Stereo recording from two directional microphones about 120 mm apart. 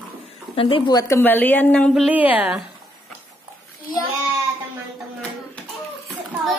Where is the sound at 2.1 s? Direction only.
15° right (ahead or behind).